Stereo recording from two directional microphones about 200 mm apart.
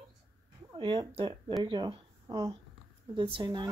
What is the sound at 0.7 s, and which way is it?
Speech, 25° right (ahead or behind).